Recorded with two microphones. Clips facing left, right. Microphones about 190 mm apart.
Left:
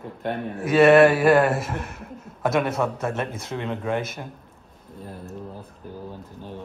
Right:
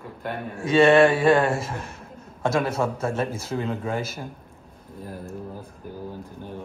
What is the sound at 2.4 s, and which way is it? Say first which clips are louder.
Speech: left 1 dB; centre (ahead or behind).